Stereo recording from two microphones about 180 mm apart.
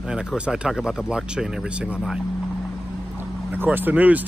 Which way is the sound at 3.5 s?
10° right (ahead or behind).